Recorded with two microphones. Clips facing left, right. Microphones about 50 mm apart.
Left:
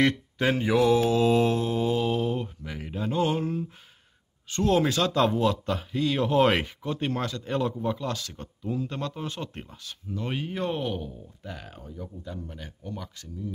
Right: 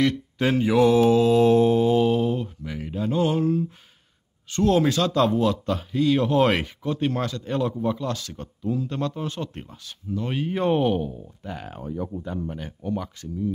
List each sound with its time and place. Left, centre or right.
0.4 s a man's voice: centre
1.6 s mantra: centre
2.3 s a man's voice: centre
10.5 s speech: right
11.8 s speech: right
12.2 s speech: right